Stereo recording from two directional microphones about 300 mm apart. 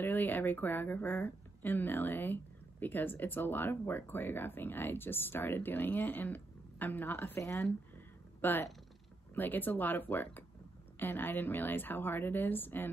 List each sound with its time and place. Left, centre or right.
0.0 s speech: centre